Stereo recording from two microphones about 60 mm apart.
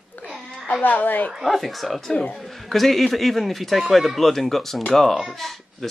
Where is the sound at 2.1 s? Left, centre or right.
Centre.